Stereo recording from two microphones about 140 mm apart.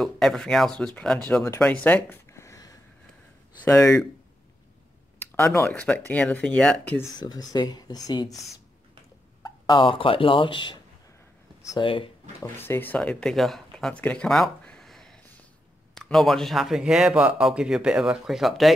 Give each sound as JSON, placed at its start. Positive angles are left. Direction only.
{"t": 0.0, "sound": "speech", "side_deg": 0}
{"t": 1.6, "sound": "a sound", "side_deg": 10}
{"t": 3.6, "sound": "speech", "side_deg": 20}
{"t": 5.2, "sound": "speech", "side_deg": 15}
{"t": 7.2, "sound": "speech", "side_deg": 30}
{"t": 9.7, "sound": "speech", "side_deg": 35}
{"t": 11.8, "sound": "speech", "side_deg": 40}
{"t": 12.5, "sound": "speech", "side_deg": 15}